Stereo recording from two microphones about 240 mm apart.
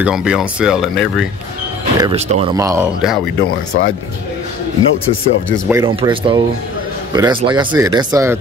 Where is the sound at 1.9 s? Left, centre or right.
Right.